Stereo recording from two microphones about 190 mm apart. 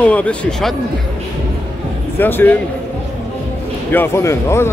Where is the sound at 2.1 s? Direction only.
10° left (ahead or behind).